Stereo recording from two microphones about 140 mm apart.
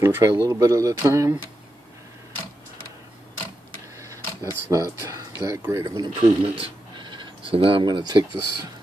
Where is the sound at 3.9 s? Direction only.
20° right (ahead or behind).